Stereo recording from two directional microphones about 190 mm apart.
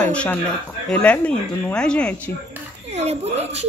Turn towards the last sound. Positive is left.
turn(degrees=-35)  # may be behind; listen again after turning